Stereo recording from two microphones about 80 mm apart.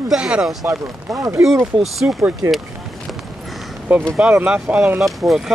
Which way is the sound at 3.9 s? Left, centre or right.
Centre.